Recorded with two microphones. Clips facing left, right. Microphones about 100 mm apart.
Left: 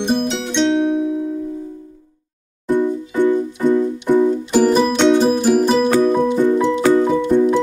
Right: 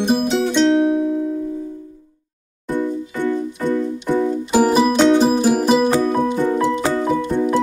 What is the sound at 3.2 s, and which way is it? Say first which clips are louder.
Music: left 4 dB; 15° left (ahead or behind).